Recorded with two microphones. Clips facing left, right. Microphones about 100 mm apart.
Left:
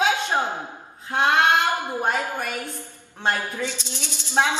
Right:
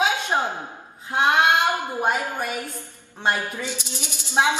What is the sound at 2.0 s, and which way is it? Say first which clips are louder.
Speech: right 1 dB; 10° right (ahead or behind).